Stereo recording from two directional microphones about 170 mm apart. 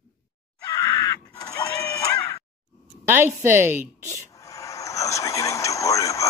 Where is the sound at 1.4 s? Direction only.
15° left (ahead or behind).